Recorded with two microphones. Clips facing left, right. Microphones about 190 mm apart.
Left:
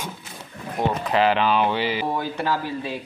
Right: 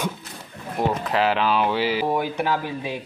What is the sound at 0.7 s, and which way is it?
Speech, centre (ahead or behind).